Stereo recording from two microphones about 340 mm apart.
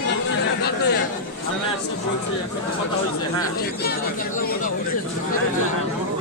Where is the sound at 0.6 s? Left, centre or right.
Left.